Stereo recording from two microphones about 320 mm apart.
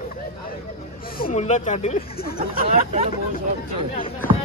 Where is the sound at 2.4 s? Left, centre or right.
Right.